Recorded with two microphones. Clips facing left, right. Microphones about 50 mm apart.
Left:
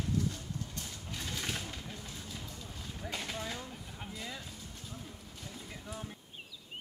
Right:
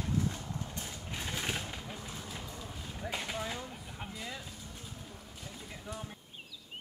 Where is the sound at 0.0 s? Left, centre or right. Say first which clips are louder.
Right 1 dB; right; by 4.4 s centre.